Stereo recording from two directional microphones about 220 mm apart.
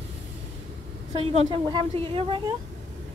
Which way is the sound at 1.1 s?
25° right (ahead or behind).